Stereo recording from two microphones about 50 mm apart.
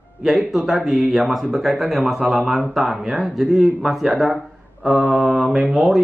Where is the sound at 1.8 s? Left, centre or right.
Right.